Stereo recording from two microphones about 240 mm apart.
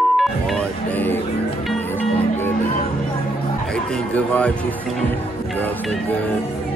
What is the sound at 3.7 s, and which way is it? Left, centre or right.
Speech, centre.